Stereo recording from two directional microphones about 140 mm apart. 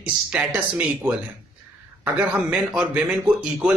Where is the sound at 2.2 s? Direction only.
10° right (ahead or behind).